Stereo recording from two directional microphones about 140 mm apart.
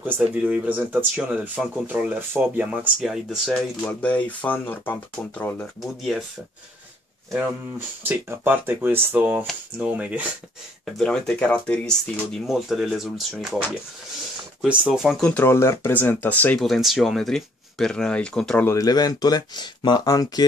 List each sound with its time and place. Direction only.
0.0 s speech: 10° right (ahead or behind); by 5.7 s 10° left (ahead or behind)
5.8 s speech: centre (ahead or behind)
7.2 s speech: 15° right (ahead or behind)
10.9 s speech: 5° left (ahead or behind)
14.6 s speech: 10° right (ahead or behind)
15.2 s speech: 15° left (ahead or behind)
16.6 s speech: centre (ahead or behind)
18.7 s speech: 25° left (ahead or behind)